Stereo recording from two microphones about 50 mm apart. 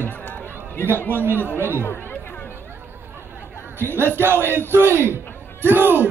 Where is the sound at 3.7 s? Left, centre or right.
Right.